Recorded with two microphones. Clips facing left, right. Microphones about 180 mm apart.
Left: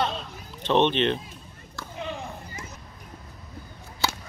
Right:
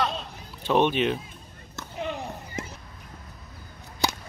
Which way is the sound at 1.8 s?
20° right (ahead or behind).